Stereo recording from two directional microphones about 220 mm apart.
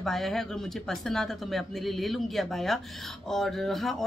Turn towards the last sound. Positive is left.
turn(degrees=0)  # may be behind; listen again after turning